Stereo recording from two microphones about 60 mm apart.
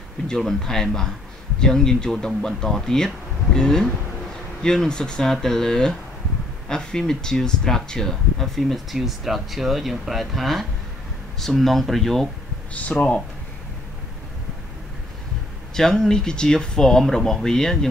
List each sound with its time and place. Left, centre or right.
0.3 s speech: centre
12.9 s speech: centre
15.7 s speech: centre